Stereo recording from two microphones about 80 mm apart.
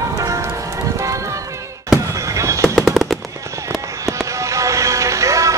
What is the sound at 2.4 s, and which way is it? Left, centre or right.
Music, right.